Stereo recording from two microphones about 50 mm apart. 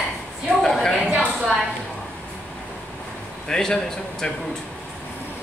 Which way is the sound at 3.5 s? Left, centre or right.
Centre.